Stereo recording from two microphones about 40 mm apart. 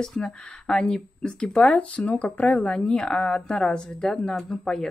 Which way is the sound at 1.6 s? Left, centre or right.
Left.